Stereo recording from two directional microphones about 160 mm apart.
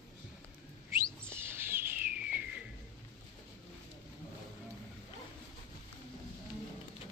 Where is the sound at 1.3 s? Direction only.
15° right (ahead or behind).